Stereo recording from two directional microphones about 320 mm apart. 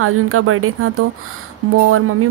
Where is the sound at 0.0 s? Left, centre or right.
Right.